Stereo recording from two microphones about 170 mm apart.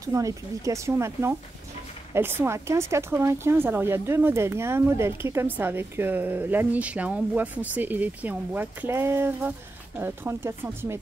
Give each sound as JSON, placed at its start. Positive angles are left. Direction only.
{"t": 0.0, "sound": "speech", "side_deg": -20}